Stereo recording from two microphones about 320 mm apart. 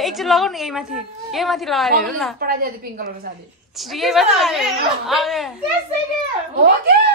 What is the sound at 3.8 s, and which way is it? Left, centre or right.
A woman's voice, centre.